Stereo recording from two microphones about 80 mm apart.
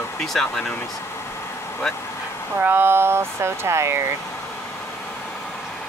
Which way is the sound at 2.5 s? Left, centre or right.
Right.